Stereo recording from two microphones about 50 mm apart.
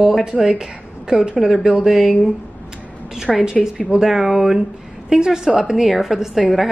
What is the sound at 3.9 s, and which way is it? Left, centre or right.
A woman's voice, centre.